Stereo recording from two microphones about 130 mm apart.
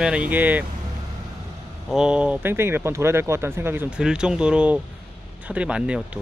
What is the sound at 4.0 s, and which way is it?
Speech, 5° right (ahead or behind).